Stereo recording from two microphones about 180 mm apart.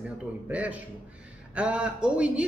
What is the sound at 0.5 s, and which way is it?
A woman's voice, 10° right (ahead or behind).